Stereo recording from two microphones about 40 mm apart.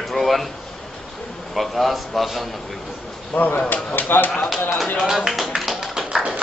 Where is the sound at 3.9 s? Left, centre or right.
Left.